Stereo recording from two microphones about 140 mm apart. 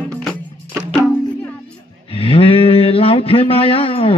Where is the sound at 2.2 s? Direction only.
40° left (ahead or behind).